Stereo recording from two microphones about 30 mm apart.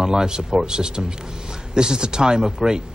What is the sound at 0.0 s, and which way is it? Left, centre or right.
A woman's voice, right.